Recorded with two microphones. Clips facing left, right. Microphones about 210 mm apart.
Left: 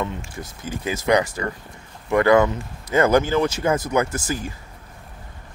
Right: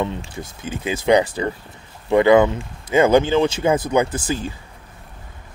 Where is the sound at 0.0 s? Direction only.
25° right (ahead or behind).